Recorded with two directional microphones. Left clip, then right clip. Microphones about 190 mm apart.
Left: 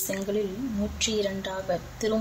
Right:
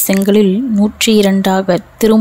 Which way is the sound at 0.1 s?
50° right (ahead or behind).